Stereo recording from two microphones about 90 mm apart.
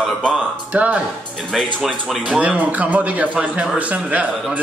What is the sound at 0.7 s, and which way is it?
Speech, 15° right (ahead or behind).